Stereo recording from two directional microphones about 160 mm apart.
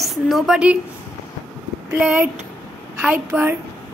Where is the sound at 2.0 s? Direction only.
10° right (ahead or behind).